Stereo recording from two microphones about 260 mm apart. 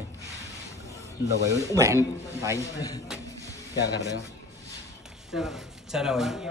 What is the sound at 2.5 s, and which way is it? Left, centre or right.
Speech, centre.